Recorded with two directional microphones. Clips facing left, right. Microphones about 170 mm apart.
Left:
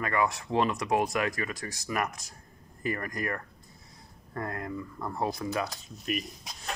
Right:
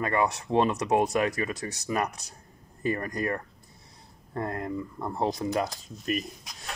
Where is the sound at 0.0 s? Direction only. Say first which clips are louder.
Right 2 dB; 25° right (ahead or behind).